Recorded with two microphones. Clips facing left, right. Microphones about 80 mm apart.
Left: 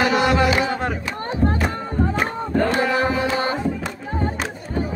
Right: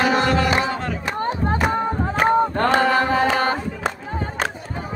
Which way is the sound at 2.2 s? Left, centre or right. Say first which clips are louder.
Right 4 dB; right.